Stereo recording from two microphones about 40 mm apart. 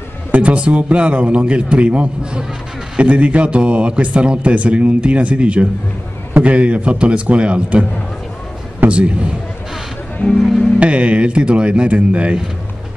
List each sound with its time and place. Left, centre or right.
0.3 s a man's voice: right
8.8 s a man's voice: right
10.8 s speech: right